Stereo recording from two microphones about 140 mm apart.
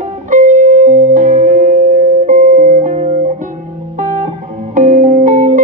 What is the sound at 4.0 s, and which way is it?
Music, 65° right (ahead or behind).